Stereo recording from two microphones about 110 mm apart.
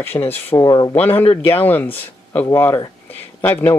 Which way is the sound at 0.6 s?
35° left (ahead or behind).